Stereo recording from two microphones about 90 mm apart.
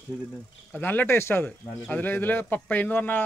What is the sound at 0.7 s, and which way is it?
A man's voice, 20° left (ahead or behind).